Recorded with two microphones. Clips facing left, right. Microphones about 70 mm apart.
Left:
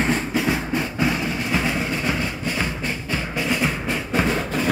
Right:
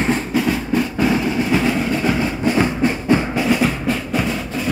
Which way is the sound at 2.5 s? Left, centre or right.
Right.